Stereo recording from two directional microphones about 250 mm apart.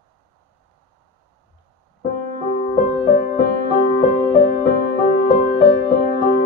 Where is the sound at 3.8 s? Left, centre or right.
Left.